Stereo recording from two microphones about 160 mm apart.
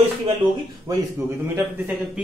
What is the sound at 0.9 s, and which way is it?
Speech, 20° right (ahead or behind).